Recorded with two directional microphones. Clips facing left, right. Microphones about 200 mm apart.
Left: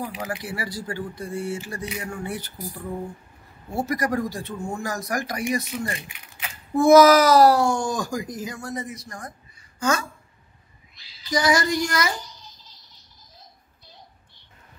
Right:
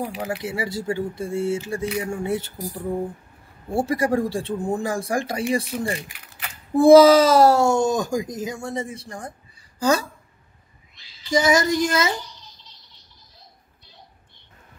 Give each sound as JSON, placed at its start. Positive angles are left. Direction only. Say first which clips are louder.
{"t": 0.2, "sound": "speech", "louder": "right 4 dB", "side_deg": -25}
{"t": 3.6, "sound": "speech", "louder": "right 4 dB", "side_deg": -30}
{"t": 5.9, "sound": "a sound", "louder": "right 4 dB", "side_deg": 0}
{"t": 6.7, "sound": "speech", "louder": "right 3 dB", "side_deg": -30}
{"t": 11.2, "sound": "speech", "louder": "right 3 dB", "side_deg": -25}